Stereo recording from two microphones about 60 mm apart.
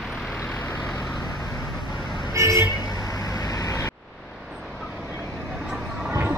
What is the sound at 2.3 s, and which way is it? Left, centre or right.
Vehicle, right.